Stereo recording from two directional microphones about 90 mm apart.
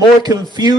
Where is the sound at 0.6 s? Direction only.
45° right (ahead or behind).